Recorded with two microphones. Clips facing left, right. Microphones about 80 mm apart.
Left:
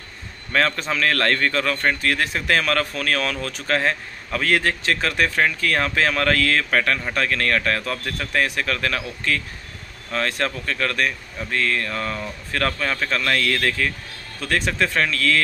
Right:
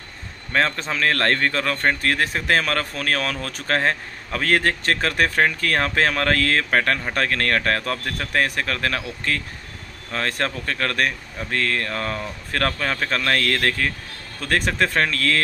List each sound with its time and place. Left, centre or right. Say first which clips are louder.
0.5 s a man's voice: left 1 dB; right